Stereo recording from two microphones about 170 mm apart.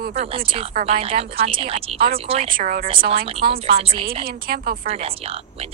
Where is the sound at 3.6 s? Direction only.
35° right (ahead or behind).